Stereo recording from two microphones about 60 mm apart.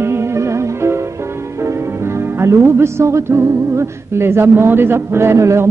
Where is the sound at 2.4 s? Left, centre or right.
Right.